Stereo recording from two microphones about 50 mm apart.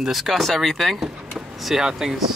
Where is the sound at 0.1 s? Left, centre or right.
Centre.